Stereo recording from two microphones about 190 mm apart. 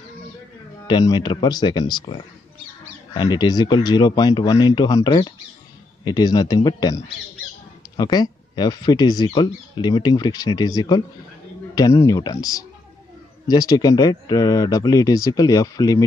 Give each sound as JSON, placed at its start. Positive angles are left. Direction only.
{"t": 0.8, "sound": "speech", "side_deg": 20}
{"t": 8.0, "sound": "speech", "side_deg": 20}